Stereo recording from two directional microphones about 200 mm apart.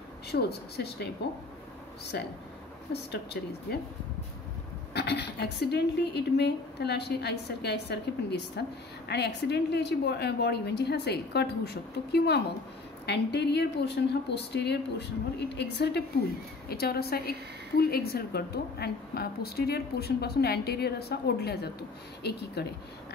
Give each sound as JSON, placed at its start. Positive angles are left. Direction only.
{"t": 0.3, "sound": "a woman's voice", "side_deg": 55}
{"t": 2.1, "sound": "a woman's voice", "side_deg": 50}
{"t": 4.9, "sound": "a woman's voice", "side_deg": 55}